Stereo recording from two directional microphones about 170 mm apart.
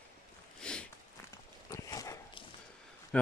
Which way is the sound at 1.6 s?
20° left (ahead or behind).